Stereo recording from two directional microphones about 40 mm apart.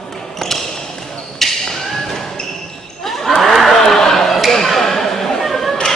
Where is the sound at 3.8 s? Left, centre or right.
Centre.